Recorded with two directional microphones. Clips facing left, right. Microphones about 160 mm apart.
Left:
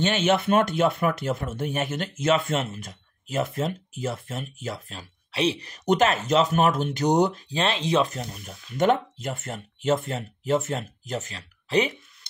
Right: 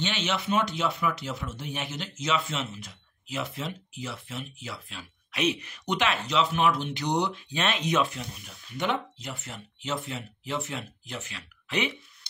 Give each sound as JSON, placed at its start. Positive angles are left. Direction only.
{"t": 0.0, "sound": "speech", "side_deg": 50}